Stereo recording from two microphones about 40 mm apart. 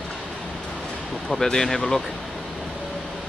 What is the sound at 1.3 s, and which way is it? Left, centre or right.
Speech, centre.